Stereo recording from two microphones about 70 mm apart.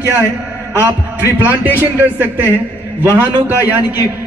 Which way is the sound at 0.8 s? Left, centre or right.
Right.